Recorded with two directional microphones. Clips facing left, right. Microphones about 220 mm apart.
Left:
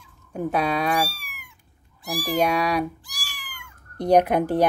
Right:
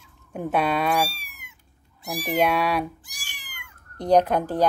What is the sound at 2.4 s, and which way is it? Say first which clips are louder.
Speech: even; 5° right (ahead or behind).